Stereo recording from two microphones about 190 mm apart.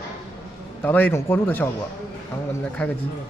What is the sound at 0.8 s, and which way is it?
Speech, 10° left (ahead or behind).